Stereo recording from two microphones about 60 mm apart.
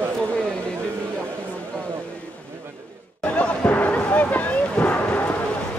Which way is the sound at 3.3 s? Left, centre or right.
Left.